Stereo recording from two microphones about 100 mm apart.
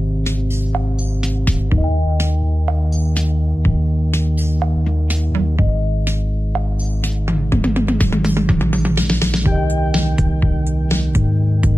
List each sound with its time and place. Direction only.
7.7 s music: 20° right (ahead or behind)
8.5 s music: 20° left (ahead or behind)
9.8 s music: 5° right (ahead or behind)